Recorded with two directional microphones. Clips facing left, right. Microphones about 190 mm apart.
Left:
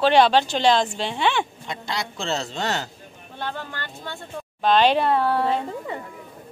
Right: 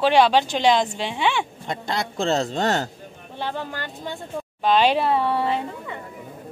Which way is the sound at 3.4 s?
10° right (ahead or behind).